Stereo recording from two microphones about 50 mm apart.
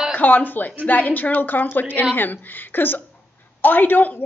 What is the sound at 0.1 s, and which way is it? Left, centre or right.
Speech, left.